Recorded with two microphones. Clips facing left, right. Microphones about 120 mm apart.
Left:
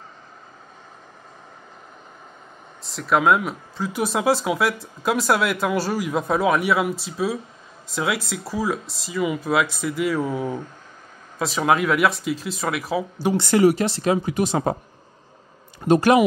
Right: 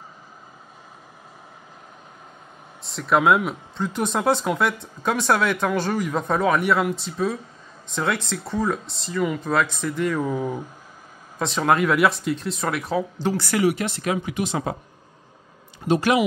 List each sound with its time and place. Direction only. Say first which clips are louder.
2.8 s speech: even; centre (ahead or behind)
10.4 s speech: even; 10° right (ahead or behind)
11.3 s speech: even; 5° left (ahead or behind)
13.3 s speech: left 6 dB; 25° left (ahead or behind)
13.6 s speech: left 6 dB; 35° left (ahead or behind)
15.9 s speech: left 4 dB; 45° left (ahead or behind)